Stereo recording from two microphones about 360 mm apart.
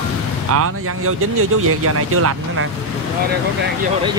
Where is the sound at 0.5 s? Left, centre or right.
Right.